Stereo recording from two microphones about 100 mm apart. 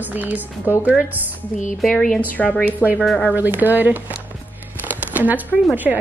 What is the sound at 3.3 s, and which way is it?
Speech, 20° right (ahead or behind).